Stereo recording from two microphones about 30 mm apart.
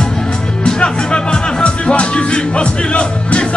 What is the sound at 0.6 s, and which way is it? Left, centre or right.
Music, left.